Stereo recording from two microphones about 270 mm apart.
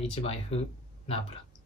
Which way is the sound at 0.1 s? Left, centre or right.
Left.